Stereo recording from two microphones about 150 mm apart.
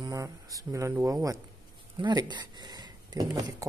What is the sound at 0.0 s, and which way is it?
Speech, 20° right (ahead or behind).